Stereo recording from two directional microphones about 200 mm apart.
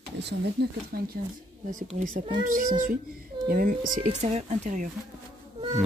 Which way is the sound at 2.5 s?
40° right (ahead or behind).